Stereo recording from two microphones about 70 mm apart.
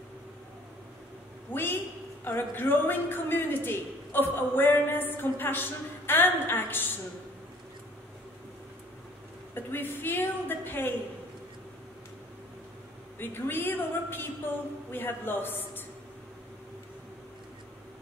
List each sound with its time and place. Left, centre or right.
1.5 s a sound: left
2.2 s a woman's voice: left
9.5 s a woman's voice: left
13.2 s a woman's voice: left